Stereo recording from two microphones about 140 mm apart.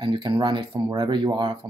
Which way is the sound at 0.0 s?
35° right (ahead or behind).